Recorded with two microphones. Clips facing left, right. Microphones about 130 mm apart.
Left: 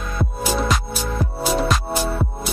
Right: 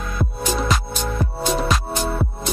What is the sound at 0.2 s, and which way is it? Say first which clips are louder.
Music: left 1 dB; centre (ahead or behind).